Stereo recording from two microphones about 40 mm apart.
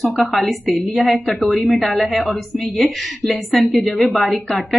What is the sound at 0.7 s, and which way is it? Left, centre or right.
Speech, right.